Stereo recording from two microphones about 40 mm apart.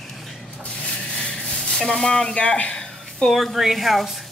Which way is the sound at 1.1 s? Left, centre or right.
Centre.